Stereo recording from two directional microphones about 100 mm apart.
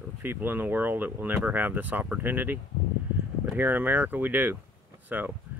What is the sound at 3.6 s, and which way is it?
Speech, 20° right (ahead or behind).